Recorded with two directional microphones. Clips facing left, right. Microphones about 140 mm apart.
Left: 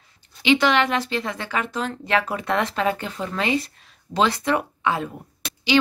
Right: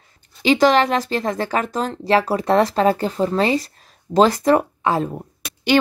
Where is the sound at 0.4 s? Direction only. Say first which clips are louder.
Right 4 dB; 40° right (ahead or behind).